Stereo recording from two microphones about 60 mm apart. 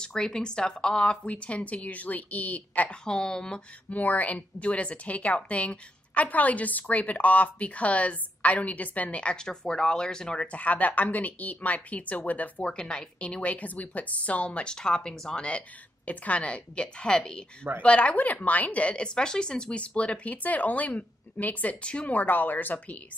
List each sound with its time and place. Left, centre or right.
0.0 s a woman's voice: centre
3.1 s a woman's voice: centre
3.9 s a woman's voice: left
12.7 s a woman's voice: centre
16.1 s a woman's voice: left